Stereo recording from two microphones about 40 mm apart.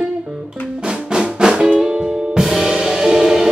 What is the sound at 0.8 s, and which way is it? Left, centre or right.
Music, centre.